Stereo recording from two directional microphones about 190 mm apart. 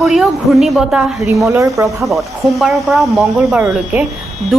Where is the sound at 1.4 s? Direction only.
15° right (ahead or behind).